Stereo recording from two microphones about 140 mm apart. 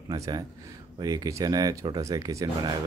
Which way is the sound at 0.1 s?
25° right (ahead or behind).